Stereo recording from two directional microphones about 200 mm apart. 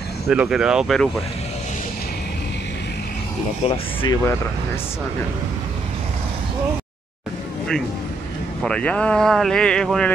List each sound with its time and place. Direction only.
0.3 s speech: 5° right (ahead or behind)
3.6 s speech: 25° left (ahead or behind)
8.6 s speech: 5° left (ahead or behind)